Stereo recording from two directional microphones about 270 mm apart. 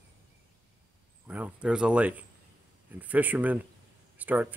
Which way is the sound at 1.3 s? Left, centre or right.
Centre.